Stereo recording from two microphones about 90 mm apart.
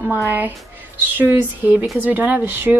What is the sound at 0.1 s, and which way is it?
Speech, 20° right (ahead or behind).